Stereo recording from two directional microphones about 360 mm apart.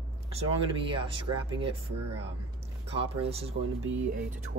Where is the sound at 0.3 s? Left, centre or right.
Centre.